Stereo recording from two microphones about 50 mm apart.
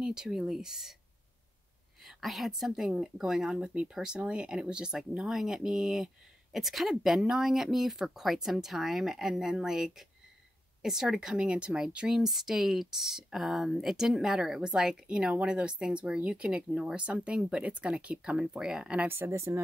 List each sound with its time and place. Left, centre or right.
0.0 s speech: centre
2.0 s speech: centre
12.2 s speech: centre
19.0 s speech: right